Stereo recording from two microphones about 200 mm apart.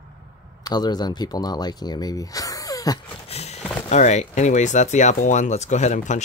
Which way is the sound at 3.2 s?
30° left (ahead or behind).